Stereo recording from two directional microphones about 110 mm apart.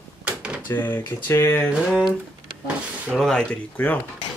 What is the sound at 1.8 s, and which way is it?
Speech, centre (ahead or behind).